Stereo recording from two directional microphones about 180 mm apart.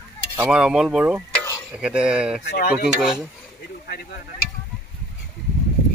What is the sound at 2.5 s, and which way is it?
Speech, 55° left (ahead or behind).